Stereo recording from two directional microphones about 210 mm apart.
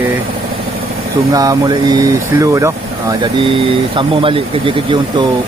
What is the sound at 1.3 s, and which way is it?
Speech, 15° right (ahead or behind).